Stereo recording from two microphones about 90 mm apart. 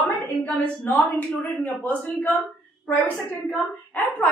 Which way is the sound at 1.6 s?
20° left (ahead or behind).